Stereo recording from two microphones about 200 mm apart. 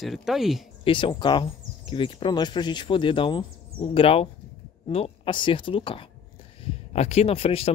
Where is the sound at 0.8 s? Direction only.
25° left (ahead or behind).